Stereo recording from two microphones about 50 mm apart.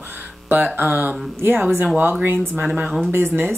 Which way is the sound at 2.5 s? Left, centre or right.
Right.